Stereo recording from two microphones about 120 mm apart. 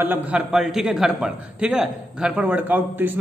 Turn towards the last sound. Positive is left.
turn(degrees=-15)  # may be behind; listen again after turning